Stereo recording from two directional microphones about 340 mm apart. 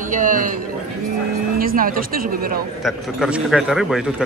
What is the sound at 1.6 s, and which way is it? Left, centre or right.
Speech, right.